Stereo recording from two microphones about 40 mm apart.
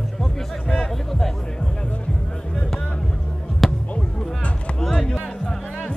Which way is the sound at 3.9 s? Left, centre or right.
Left.